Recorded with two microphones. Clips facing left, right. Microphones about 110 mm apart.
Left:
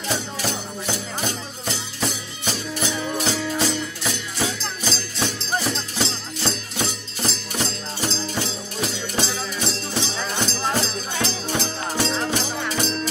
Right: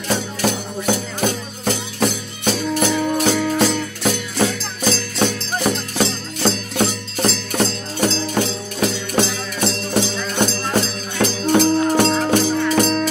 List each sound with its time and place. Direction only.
0.1 s music: 55° right (ahead or behind)
11.1 s music: 55° right (ahead or behind)